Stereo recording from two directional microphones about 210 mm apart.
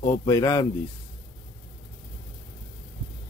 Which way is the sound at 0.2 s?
15° left (ahead or behind).